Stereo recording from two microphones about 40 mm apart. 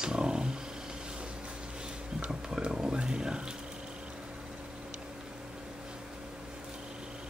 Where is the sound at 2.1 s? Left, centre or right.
Right.